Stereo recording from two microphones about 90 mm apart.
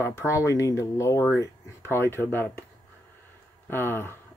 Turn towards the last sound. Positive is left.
turn(degrees=25)  # may be behind; listen again after turning